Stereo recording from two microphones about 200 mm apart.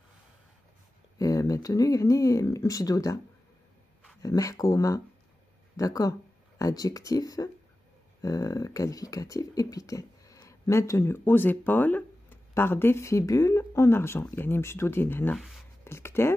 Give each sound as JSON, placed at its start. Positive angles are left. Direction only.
{"t": 1.1, "sound": "speech", "side_deg": 15}
{"t": 4.2, "sound": "speech", "side_deg": 15}